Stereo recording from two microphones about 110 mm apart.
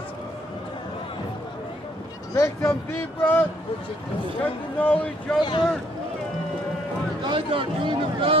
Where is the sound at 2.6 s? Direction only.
20° left (ahead or behind).